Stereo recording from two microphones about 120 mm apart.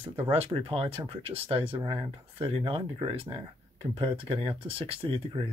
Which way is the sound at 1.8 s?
40° right (ahead or behind).